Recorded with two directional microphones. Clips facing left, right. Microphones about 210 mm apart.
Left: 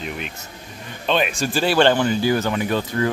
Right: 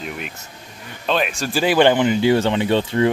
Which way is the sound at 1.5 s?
15° right (ahead or behind).